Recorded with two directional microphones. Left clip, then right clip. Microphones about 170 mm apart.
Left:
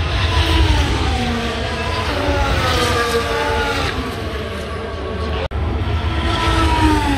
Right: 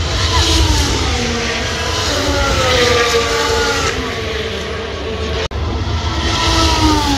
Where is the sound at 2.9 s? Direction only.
90° left.